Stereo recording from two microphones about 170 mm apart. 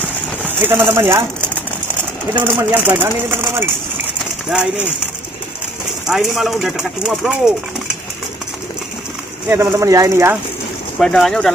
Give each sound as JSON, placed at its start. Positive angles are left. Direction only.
{"t": 0.4, "sound": "speech", "side_deg": -10}
{"t": 6.0, "sound": "speech", "side_deg": 0}
{"t": 9.5, "sound": "speech", "side_deg": -15}
{"t": 11.0, "sound": "speech", "side_deg": 5}